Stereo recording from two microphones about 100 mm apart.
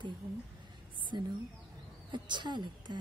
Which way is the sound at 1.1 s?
45° right (ahead or behind).